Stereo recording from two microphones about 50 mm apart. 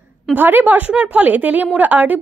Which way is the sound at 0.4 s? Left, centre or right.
Right.